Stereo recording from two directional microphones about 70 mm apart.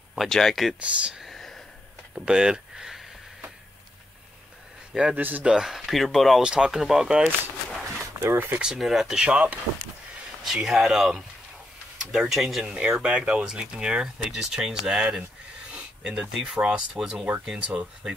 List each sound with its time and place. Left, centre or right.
0.1 s speech: centre
0.7 s speech: centre
1.2 s a sound: centre
2.1 s speech: centre
4.9 s speech: centre
5.4 s speech: centre
6.4 s speech: centre
7.7 s a sound: centre
8.0 s a sound: right
8.5 s speech: centre
10.4 s speech: centre
15.7 s a sound: centre
16.5 s speech: centre